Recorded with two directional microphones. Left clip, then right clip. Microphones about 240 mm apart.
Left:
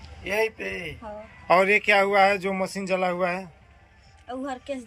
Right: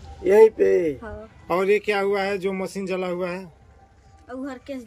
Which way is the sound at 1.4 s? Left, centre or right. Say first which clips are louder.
Left 2 dB; centre.